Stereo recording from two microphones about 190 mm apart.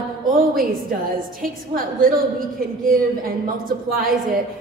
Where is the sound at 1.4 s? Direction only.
50° right (ahead or behind).